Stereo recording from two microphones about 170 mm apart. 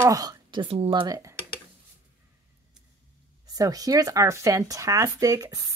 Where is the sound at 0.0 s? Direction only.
20° right (ahead or behind).